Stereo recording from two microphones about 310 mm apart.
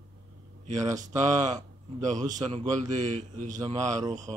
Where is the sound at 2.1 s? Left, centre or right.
Right.